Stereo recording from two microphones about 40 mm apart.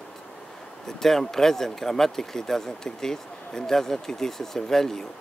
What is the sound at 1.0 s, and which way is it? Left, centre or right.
Speech, centre.